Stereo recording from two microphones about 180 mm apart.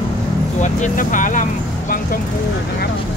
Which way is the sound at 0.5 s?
45° left (ahead or behind).